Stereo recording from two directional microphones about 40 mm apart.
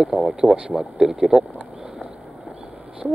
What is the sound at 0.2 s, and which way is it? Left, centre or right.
Speech, centre.